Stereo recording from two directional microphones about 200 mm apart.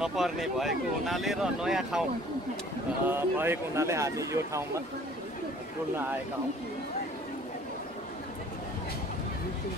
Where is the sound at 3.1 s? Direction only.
10° right (ahead or behind).